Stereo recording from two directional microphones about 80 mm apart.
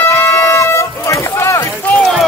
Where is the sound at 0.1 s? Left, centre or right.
Left.